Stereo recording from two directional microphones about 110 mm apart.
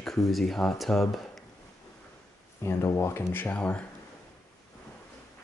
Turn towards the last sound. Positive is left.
turn(degrees=10)  # may be behind; listen again after turning